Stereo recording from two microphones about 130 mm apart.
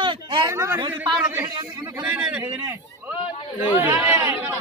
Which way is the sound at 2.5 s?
20° right (ahead or behind).